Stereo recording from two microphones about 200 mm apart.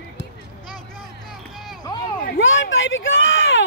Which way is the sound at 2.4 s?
70° left (ahead or behind).